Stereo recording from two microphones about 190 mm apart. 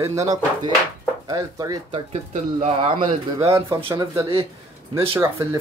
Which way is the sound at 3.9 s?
15° right (ahead or behind).